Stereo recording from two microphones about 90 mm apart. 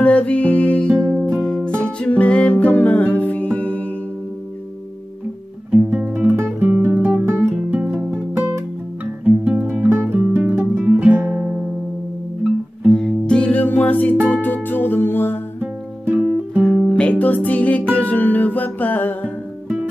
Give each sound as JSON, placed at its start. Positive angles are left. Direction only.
{"t": 0.0, "sound": "music", "side_deg": 15}
{"t": 1.0, "sound": "music", "side_deg": -20}
{"t": 1.3, "sound": "music", "side_deg": 10}
{"t": 5.7, "sound": "guitar", "side_deg": -15}
{"t": 7.7, "sound": "music", "side_deg": -20}
{"t": 12.9, "sound": "music", "side_deg": 10}
{"t": 15.6, "sound": "music", "side_deg": -15}
{"t": 16.6, "sound": "music", "side_deg": 0}
{"t": 16.9, "sound": "music", "side_deg": 15}